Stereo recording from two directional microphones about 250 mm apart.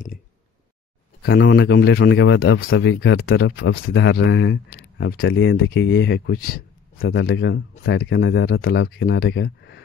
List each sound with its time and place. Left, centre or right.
1.2 s speech: left